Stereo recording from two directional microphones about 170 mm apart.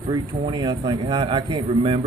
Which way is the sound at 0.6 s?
25° right (ahead or behind).